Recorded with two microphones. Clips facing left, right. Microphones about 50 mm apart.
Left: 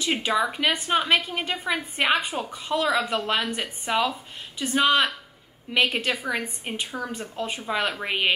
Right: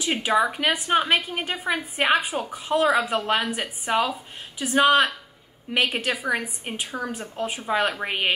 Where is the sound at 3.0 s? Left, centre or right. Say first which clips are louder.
Right 2 dB; centre.